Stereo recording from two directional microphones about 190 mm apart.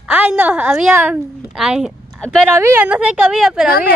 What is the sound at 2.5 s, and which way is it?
A woman's voice, 15° right (ahead or behind).